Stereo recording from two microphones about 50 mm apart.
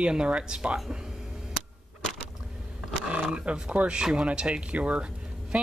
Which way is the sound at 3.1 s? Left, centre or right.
Right.